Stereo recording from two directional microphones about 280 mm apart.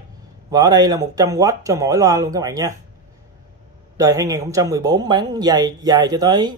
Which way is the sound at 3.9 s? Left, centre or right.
Centre.